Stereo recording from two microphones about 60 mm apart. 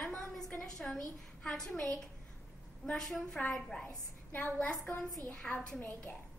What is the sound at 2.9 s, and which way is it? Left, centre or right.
Speech, centre.